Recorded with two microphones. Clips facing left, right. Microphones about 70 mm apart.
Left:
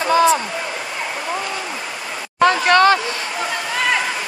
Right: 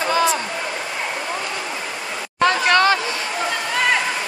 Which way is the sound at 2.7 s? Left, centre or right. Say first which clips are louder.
Left 4 dB; left.